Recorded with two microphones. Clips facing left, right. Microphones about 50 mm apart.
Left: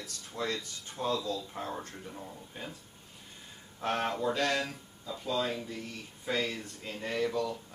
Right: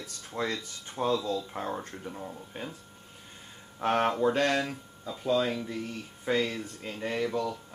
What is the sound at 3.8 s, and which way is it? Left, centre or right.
Speech, right.